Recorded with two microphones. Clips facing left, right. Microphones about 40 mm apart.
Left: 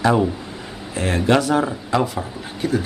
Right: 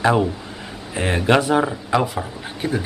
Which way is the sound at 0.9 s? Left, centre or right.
Right.